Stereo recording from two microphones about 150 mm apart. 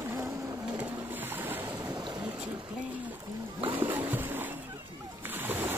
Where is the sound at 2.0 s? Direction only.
25° right (ahead or behind).